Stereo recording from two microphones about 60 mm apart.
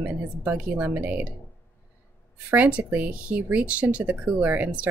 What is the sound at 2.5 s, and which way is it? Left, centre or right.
A woman's voice, right.